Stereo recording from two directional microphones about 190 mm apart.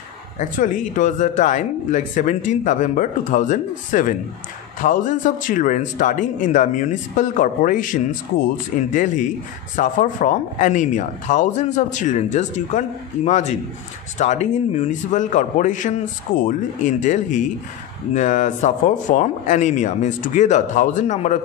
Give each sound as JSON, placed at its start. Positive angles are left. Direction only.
{"t": 0.4, "sound": "a man's voice", "side_deg": 40}